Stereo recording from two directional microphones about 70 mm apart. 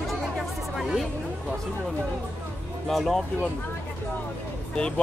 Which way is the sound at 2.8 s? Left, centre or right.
Centre.